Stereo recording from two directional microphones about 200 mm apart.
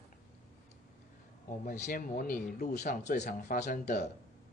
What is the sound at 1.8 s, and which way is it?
Speech, 45° left (ahead or behind).